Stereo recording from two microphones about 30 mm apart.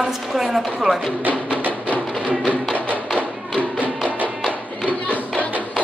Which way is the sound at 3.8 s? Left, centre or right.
Right.